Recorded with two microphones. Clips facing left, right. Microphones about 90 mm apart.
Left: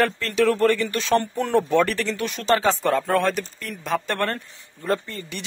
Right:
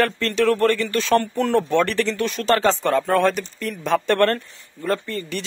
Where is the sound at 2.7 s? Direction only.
Centre (ahead or behind).